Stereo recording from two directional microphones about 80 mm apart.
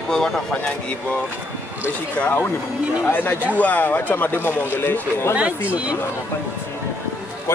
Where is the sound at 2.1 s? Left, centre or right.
Left.